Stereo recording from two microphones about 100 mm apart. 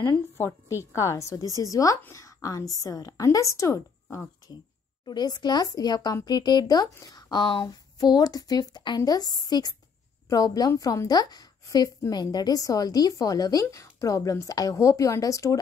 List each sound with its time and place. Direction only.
0.7 s a woman's voice: 30° left (ahead or behind)
5.0 s a woman's voice: 45° left (ahead or behind)